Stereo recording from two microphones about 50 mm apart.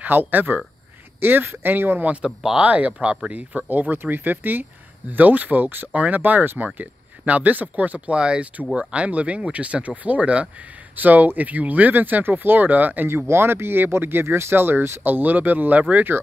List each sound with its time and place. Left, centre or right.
0.0 s speech: right
2.2 s speech: centre
2.6 s speech: right
8.2 s speech: centre; by 13.1 s right
13.3 s speech: right